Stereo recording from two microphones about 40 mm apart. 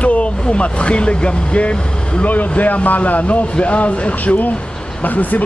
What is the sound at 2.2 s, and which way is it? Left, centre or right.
Speech, left.